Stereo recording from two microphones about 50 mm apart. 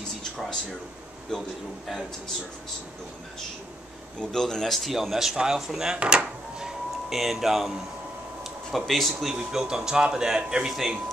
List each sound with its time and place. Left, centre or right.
0.2 s a sound: centre
1.3 s a man's voice: centre
4.2 s speech: centre
7.1 s speech: centre
9.3 s speech: centre